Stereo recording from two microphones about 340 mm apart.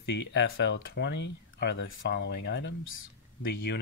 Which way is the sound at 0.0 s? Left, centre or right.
Left.